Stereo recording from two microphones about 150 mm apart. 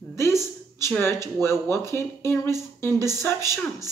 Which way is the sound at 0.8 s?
15° left (ahead or behind).